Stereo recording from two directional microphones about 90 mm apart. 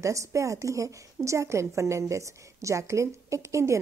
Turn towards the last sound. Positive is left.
turn(degrees=-35)  # may be behind; listen again after turning